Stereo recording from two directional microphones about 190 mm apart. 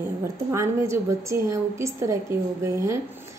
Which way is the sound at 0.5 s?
15° right (ahead or behind).